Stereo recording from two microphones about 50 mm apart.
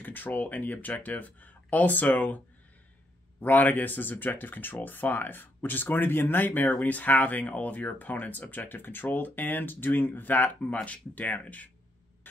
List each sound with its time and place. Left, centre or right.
0.0 s speech: left